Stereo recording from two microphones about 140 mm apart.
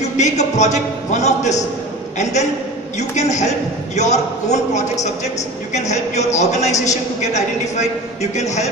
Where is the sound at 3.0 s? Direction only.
55° left (ahead or behind).